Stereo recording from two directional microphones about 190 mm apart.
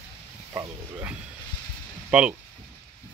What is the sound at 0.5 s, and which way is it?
Wild animals, 10° right (ahead or behind).